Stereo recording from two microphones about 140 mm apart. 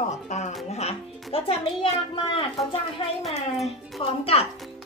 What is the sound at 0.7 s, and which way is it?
A woman's voice, 45° left (ahead or behind).